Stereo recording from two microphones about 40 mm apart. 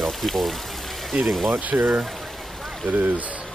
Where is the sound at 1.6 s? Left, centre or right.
Right.